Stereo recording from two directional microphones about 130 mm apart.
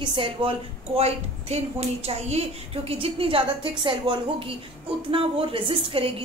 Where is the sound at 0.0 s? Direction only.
40° right (ahead or behind).